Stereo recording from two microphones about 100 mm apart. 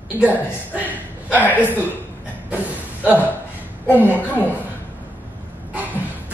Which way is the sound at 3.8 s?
20° left (ahead or behind).